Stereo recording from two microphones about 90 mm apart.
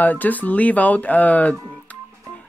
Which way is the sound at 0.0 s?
20° left (ahead or behind).